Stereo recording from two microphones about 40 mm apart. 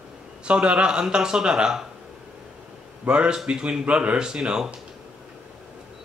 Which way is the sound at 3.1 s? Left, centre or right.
Right.